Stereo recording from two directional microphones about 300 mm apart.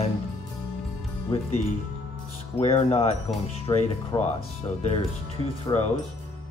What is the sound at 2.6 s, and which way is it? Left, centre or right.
Speech, left.